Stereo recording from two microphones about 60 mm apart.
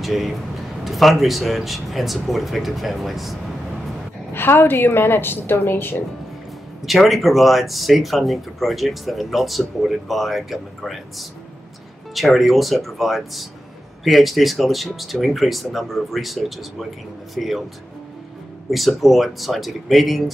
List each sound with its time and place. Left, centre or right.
0.0 s speech: centre
4.3 s a woman's voice: left
6.9 s speech: centre
12.4 s speech: centre
18.7 s speech: centre